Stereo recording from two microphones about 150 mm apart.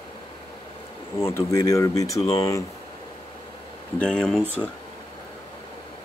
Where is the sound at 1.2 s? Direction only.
20° left (ahead or behind).